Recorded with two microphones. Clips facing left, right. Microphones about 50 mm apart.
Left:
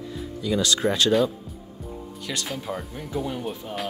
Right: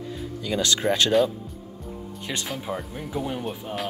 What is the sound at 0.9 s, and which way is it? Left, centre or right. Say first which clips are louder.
Speech: even; right.